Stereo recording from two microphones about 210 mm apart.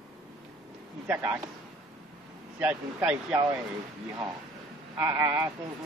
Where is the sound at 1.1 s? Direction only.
10° right (ahead or behind).